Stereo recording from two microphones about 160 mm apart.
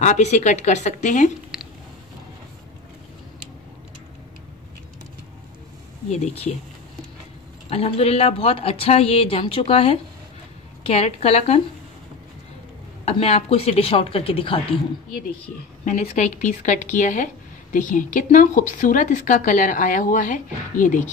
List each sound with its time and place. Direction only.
0.0 s speech: 45° left (ahead or behind)
1.5 s a sound: 5° right (ahead or behind)
6.0 s speech: 45° left (ahead or behind)
7.7 s speech: 40° left (ahead or behind)
13.0 s speech: 40° left (ahead or behind)
15.8 s speech: 50° left (ahead or behind)